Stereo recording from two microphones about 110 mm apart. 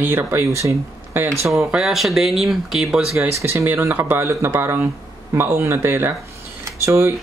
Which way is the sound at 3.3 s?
25° right (ahead or behind).